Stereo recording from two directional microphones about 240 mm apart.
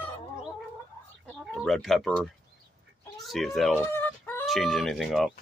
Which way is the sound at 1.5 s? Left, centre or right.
Centre.